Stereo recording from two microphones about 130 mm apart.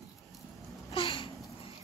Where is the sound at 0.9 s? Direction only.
40° left (ahead or behind).